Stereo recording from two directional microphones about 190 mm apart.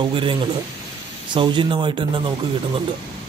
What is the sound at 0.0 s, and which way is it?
Speech, 25° right (ahead or behind).